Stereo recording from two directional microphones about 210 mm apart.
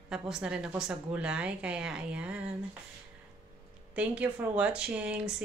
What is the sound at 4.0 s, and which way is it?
A woman's voice, 5° right (ahead or behind).